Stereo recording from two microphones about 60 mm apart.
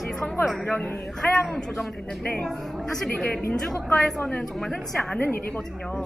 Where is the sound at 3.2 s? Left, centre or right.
Left.